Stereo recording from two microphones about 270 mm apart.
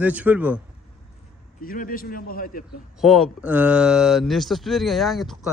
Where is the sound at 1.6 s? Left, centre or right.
Left.